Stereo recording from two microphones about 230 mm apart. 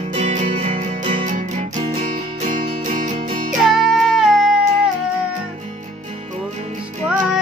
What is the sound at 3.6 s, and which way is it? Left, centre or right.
Music, centre.